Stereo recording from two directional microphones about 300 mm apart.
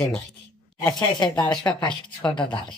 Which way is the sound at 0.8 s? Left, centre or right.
Centre.